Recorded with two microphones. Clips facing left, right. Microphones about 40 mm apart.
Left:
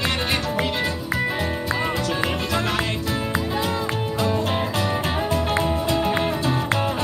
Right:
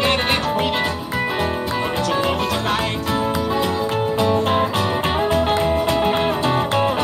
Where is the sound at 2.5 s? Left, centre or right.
Right.